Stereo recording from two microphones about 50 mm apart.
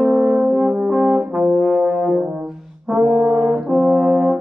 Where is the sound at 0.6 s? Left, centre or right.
Centre.